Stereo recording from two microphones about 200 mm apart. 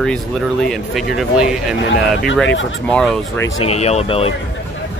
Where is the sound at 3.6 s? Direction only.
30° left (ahead or behind).